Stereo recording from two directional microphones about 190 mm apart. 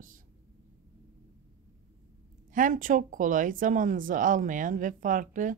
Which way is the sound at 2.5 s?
45° right (ahead or behind).